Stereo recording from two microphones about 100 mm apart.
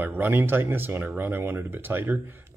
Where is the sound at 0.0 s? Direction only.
20° right (ahead or behind).